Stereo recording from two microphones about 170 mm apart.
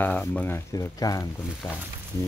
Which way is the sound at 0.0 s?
10° left (ahead or behind).